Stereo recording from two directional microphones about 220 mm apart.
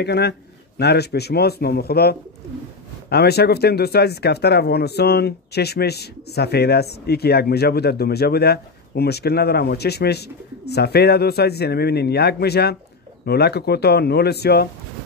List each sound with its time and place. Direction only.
0.0 s speech: 50° left (ahead or behind)